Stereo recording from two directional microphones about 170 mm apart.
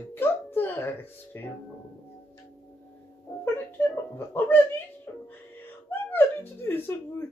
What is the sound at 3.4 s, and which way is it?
Whimper, 15° left (ahead or behind).